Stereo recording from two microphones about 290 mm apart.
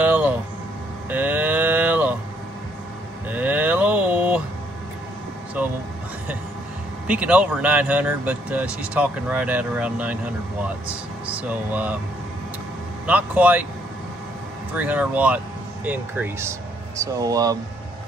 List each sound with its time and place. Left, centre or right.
0.0 s a sound: centre
1.1 s livestock: centre
3.3 s a sound: centre
7.1 s speech: centre
13.0 s speech: centre
14.7 s speech: centre